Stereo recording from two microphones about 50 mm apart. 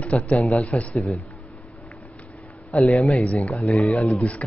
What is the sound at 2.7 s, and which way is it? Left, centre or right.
Speech, left.